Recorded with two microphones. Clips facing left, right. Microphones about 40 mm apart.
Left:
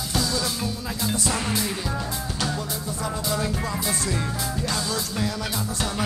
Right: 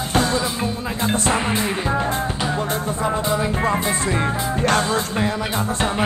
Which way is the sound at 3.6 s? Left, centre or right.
Right.